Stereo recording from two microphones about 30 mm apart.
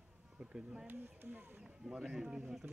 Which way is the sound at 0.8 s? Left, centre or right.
Right.